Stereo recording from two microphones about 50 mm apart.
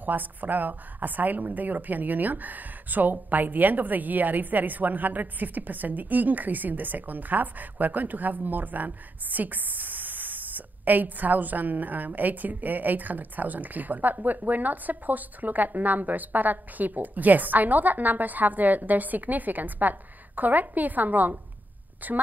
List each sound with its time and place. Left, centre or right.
0.0 s a woman's voice: right